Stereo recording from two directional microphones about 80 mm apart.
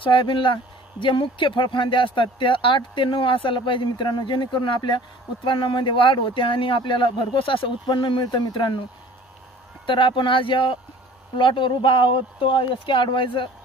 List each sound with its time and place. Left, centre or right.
0.0 s speech: left
9.8 s speech: left